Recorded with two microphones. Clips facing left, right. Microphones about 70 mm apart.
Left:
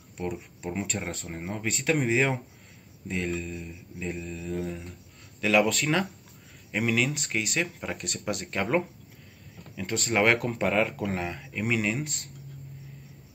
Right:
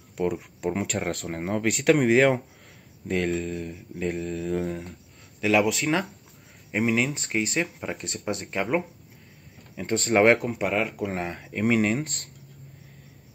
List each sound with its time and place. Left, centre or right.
0.2 s speech: right
3.1 s mantra: right
5.4 s speech: centre
8.5 s speech: centre
9.8 s speech: right
10.5 s speech: centre
11.1 s speech: right